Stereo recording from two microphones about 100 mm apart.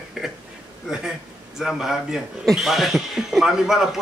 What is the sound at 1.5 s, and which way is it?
Speech, 5° right (ahead or behind).